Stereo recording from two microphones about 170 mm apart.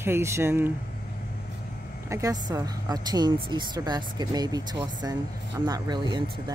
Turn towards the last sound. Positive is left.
turn(degrees=-25)  # may be behind; listen again after turning